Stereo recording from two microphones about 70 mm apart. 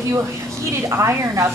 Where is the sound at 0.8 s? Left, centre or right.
Right.